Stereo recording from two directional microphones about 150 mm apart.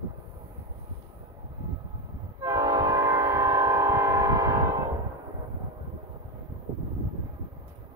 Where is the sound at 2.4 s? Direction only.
25° right (ahead or behind).